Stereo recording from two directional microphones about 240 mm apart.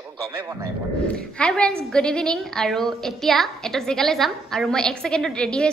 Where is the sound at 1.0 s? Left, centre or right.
Centre.